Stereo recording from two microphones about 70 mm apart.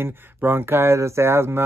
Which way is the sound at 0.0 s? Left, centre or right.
Right.